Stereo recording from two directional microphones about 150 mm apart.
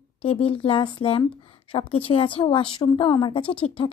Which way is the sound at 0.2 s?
40° left (ahead or behind).